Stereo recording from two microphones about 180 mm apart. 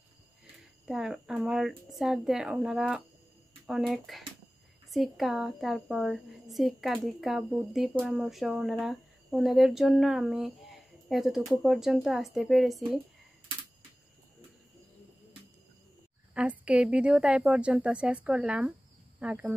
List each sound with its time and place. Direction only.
0.8 s speech: 5° right (ahead or behind)
16.3 s speech: 5° right (ahead or behind)